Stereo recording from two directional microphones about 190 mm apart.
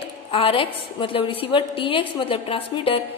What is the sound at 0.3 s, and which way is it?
A woman's voice, 30° left (ahead or behind).